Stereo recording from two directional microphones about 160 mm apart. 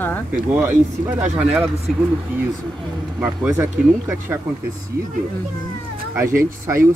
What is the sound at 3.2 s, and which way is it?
Speech, 20° right (ahead or behind).